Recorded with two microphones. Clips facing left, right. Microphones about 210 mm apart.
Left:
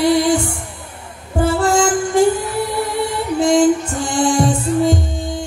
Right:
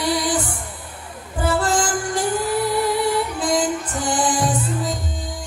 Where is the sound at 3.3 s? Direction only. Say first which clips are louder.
Left 8 dB; 25° left (ahead or behind).